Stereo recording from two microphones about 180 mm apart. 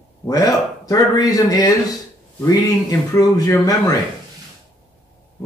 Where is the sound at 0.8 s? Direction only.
20° left (ahead or behind).